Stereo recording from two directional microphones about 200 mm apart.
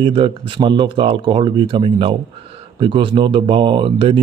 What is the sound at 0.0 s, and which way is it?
Speech, 25° right (ahead or behind).